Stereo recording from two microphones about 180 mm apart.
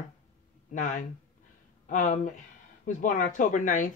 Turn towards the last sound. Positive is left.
turn(degrees=45)  # may be behind; listen again after turning